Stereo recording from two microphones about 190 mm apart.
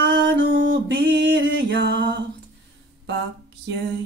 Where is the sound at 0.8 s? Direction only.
70° right (ahead or behind).